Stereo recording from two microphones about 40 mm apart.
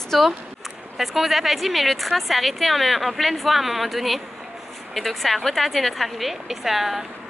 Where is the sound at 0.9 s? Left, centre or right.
Centre.